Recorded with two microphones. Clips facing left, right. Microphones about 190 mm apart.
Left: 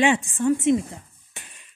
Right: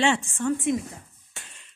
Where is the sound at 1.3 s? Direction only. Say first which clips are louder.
Left 1 dB; 15° left (ahead or behind).